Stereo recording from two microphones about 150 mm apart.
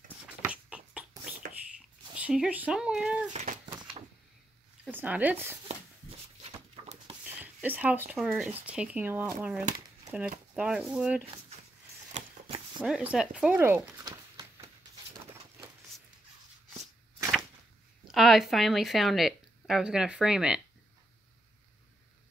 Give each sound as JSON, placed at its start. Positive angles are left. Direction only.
{"t": 0.5, "sound": "a sound", "side_deg": -10}
{"t": 2.1, "sound": "speech", "side_deg": -5}
{"t": 3.3, "sound": "speech", "side_deg": -55}
{"t": 3.6, "sound": "typewriter", "side_deg": -30}
{"t": 4.9, "sound": "speech", "side_deg": -10}
{"t": 6.4, "sound": "dog", "side_deg": -40}
{"t": 7.2, "sound": "zipper", "side_deg": -10}
{"t": 8.2, "sound": "speech", "side_deg": -5}
{"t": 12.1, "sound": "a sound", "side_deg": -40}
{"t": 12.8, "sound": "a sound", "side_deg": -5}
{"t": 18.0, "sound": "speech", "side_deg": 0}